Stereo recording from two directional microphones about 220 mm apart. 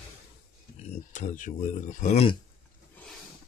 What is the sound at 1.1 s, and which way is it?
Speech, 35° left (ahead or behind).